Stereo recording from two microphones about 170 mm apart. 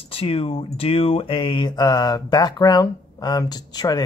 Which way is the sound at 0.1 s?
35° left (ahead or behind).